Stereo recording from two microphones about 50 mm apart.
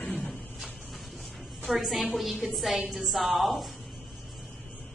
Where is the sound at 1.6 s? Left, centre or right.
Centre.